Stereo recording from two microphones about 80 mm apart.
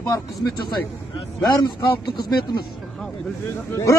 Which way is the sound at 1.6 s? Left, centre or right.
Left.